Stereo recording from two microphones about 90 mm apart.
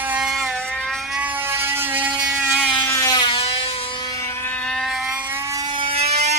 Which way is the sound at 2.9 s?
40° left (ahead or behind).